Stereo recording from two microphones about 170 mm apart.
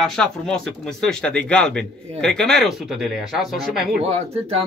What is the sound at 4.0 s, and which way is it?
Speech, 35° right (ahead or behind).